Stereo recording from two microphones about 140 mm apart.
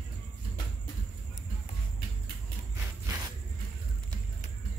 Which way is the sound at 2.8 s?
25° right (ahead or behind).